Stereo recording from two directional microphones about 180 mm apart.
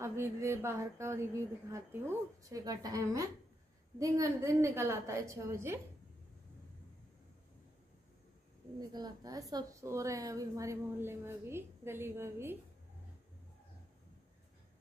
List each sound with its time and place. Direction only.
0.0 s a woman's voice: 15° right (ahead or behind)
8.7 s a woman's voice: 20° right (ahead or behind)